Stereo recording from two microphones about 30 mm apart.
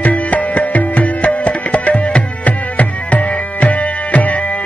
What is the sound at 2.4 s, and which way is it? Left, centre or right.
Music, left.